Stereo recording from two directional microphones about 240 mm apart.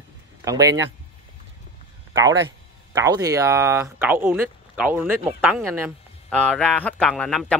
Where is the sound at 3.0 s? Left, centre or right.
Centre.